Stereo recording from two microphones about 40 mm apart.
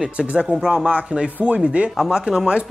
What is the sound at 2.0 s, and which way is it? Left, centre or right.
Speech, centre.